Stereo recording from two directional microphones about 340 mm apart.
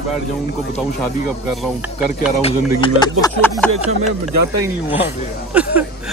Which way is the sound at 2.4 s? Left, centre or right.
Centre.